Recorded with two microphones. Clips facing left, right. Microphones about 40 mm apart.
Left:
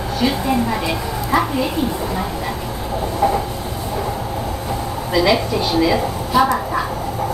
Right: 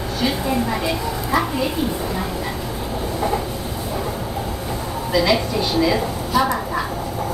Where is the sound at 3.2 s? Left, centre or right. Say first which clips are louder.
Left 5 dB; centre.